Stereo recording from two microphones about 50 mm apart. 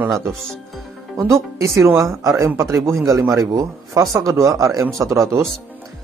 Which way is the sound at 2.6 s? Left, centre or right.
Right.